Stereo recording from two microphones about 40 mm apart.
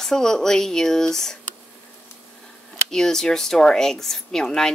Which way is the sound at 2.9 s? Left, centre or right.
Centre.